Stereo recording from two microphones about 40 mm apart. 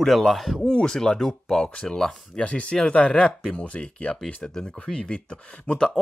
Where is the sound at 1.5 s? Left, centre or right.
Left.